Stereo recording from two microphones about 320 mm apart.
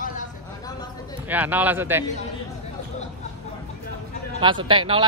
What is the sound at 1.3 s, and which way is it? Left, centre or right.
Speech, centre.